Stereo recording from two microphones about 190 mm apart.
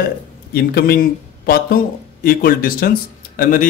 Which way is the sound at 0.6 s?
55° left (ahead or behind).